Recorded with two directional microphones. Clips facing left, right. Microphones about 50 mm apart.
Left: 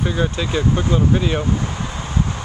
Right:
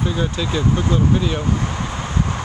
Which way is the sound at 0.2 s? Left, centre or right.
Centre.